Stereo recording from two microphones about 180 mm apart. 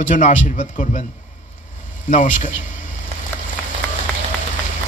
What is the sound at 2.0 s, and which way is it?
Speech, 45° left (ahead or behind).